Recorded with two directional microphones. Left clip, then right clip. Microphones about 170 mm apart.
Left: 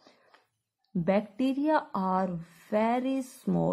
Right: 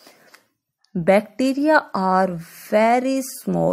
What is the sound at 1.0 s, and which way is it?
A woman's voice, 25° right (ahead or behind).